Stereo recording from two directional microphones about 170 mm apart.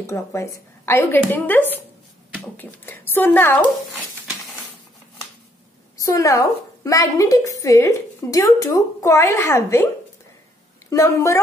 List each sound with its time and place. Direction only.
0.0 s speech: 15° left (ahead or behind)
5.9 s a woman's voice: 20° left (ahead or behind)
10.9 s speech: 15° left (ahead or behind)